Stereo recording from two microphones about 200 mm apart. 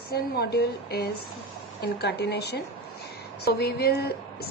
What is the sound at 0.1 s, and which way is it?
A woman's voice, 50° left (ahead or behind).